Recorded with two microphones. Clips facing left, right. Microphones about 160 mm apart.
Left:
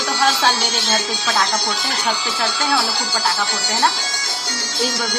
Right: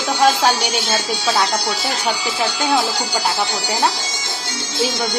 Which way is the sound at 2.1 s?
10° right (ahead or behind).